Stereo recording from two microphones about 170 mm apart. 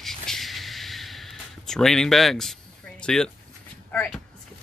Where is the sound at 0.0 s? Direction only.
Centre (ahead or behind).